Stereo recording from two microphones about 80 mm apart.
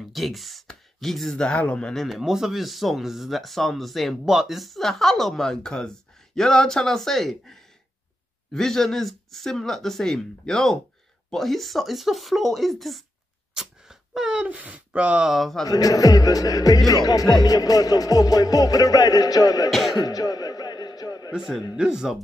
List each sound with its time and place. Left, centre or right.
0.1 s speech: centre
2.0 s speech: centre
8.5 s speech: centre
15.6 s music: left
19.7 s music: centre
20.0 s a sound: left
21.3 s speech: centre